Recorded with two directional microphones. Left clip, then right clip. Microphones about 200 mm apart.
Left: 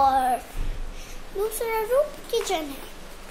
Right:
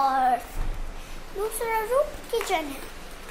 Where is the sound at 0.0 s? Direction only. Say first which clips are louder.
Left 2 dB; 20° left (ahead or behind).